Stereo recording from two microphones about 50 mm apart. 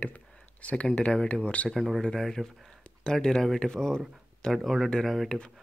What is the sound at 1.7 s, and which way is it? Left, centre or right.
Speech, centre.